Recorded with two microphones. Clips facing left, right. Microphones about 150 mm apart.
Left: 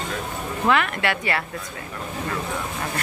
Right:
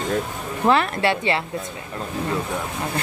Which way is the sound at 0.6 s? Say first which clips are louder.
Right 3 dB; 30° right (ahead or behind).